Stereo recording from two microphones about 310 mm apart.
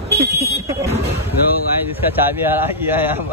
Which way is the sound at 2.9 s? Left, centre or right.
Centre.